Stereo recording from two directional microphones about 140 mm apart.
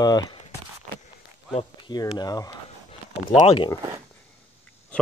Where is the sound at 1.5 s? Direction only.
45° left (ahead or behind).